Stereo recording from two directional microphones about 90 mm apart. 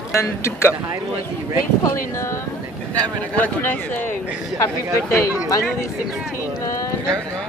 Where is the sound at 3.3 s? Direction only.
20° left (ahead or behind).